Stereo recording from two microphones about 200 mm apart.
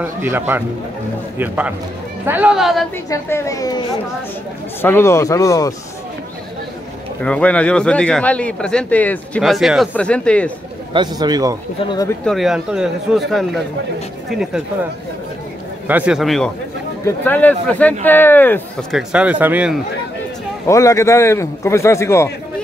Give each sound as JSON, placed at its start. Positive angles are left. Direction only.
{"t": 0.0, "sound": "a man's voice", "side_deg": -10}
{"t": 3.1, "sound": "speech", "side_deg": 15}
{"t": 4.8, "sound": "speech", "side_deg": 10}
{"t": 7.2, "sound": "a man's voice", "side_deg": 5}
{"t": 10.9, "sound": "a man's voice", "side_deg": -20}
{"t": 11.8, "sound": "speech", "side_deg": 20}
{"t": 12.3, "sound": "a man's voice", "side_deg": 0}
{"t": 15.9, "sound": "a man's voice", "side_deg": -5}
{"t": 20.6, "sound": "speech", "side_deg": 15}